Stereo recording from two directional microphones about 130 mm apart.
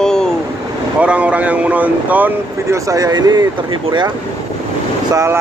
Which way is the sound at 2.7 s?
25° right (ahead or behind).